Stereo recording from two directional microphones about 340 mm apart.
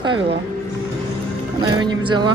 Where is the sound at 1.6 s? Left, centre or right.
Centre.